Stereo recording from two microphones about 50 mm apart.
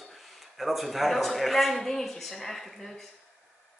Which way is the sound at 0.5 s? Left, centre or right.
Centre.